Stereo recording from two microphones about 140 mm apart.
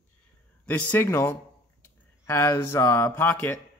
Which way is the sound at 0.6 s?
15° left (ahead or behind).